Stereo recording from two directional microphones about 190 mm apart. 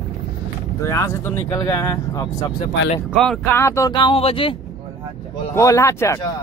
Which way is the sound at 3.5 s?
15° left (ahead or behind).